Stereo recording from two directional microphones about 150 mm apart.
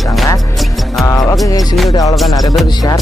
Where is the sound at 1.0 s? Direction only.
20° left (ahead or behind).